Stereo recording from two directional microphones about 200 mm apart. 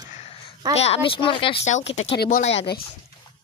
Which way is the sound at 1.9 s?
70° left (ahead or behind).